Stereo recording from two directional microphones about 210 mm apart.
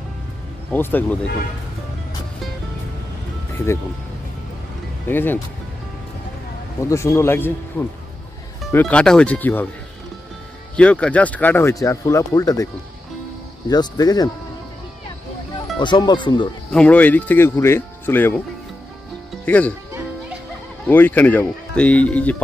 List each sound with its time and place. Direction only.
0.7 s speech: 10° left (ahead or behind)
5.0 s speech: 10° left (ahead or behind)
6.8 s speech: 15° left (ahead or behind)
10.8 s speech: 5° left (ahead or behind)
13.7 s speech: 20° left (ahead or behind)
15.8 s speech: 20° left (ahead or behind)
16.7 s speech: 5° left (ahead or behind)
19.4 s speech: 5° left (ahead or behind)
20.8 s speech: 10° left (ahead or behind)